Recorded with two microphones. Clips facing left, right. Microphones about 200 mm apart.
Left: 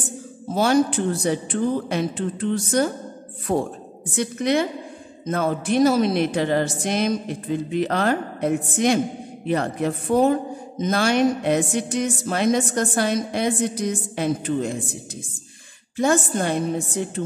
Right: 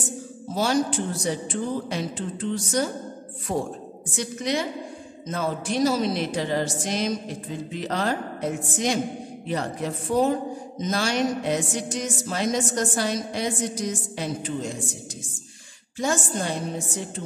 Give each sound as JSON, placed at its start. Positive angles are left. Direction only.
{"t": 0.6, "sound": "speech", "side_deg": 55}
{"t": 16.0, "sound": "speech", "side_deg": 60}